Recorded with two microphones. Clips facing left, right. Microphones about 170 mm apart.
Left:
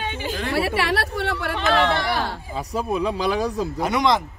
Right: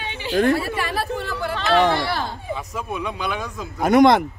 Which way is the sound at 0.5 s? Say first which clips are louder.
Left 2 dB; 75° left (ahead or behind).